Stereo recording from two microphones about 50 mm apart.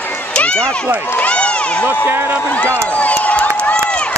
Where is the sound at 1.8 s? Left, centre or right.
Right.